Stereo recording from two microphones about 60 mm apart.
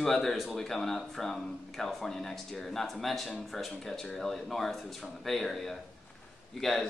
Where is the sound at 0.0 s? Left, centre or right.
Centre.